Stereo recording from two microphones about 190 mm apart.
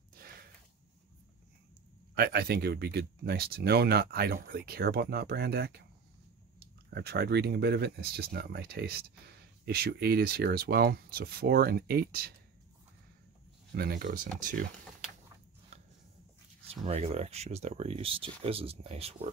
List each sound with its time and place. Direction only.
2.1 s speech: 55° right (ahead or behind)
6.9 s speech: 55° right (ahead or behind)
13.7 s speech: 50° right (ahead or behind)
16.6 s speech: 30° right (ahead or behind)